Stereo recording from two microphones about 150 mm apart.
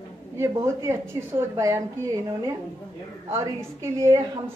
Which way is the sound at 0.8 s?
20° right (ahead or behind).